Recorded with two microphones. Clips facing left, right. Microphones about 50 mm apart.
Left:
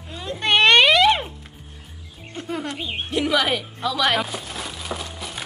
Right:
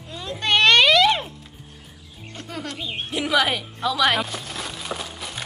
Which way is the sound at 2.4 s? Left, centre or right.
Centre.